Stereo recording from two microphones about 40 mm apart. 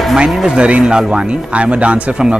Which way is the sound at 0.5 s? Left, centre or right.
Right.